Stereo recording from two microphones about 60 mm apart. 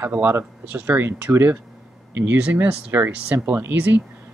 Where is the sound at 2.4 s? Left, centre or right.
Right.